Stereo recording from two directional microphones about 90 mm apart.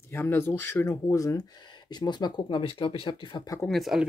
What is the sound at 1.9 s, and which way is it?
Speech, 55° left (ahead or behind).